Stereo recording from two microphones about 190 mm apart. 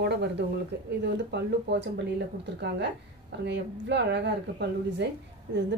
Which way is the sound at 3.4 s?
65° right (ahead or behind).